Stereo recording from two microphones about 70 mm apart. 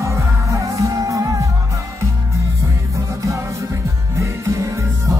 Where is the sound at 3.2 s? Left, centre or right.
Right.